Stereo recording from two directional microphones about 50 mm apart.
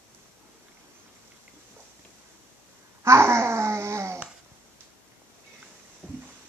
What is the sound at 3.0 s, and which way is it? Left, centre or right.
Babbling, right.